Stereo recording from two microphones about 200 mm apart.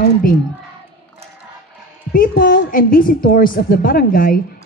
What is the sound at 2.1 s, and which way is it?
A woman's voice, 45° left (ahead or behind).